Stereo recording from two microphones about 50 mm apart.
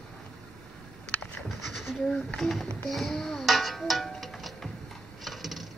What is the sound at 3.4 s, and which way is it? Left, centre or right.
Music, centre.